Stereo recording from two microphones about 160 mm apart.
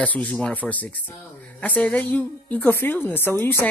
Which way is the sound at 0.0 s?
10° left (ahead or behind).